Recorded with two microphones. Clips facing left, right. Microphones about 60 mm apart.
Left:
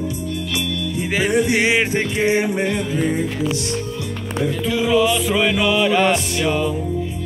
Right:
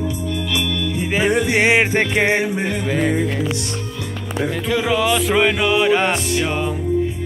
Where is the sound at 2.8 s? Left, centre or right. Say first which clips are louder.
Right 2 dB; right.